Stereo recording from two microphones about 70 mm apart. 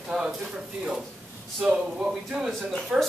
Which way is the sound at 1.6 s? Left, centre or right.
Centre.